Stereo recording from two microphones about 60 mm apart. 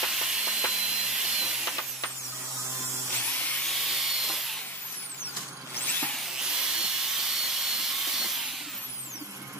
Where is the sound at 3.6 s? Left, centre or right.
Centre.